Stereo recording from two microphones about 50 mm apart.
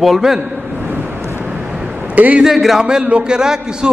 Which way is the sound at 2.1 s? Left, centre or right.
Right.